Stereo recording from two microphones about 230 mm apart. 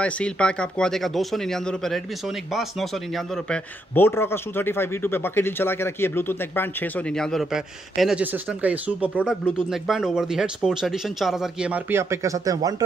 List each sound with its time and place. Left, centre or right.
0.0 s speech: centre